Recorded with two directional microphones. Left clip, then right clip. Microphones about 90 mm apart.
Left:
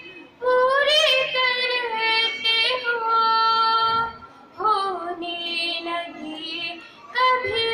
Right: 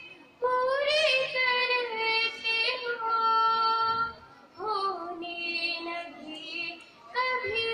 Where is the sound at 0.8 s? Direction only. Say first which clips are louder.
Left 7 dB; 15° left (ahead or behind).